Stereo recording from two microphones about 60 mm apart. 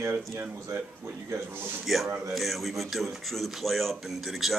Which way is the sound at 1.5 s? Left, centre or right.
Right.